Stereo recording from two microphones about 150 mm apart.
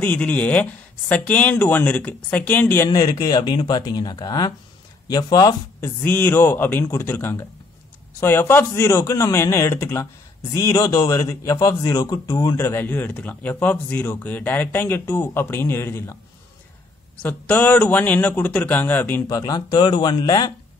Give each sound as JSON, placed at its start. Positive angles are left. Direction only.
{"t": 0.0, "sound": "a man's voice", "side_deg": 10}
{"t": 6.0, "sound": "a man's voice", "side_deg": 10}
{"t": 17.2, "sound": "a man's voice", "side_deg": 10}
{"t": 19.3, "sound": "speech", "side_deg": 25}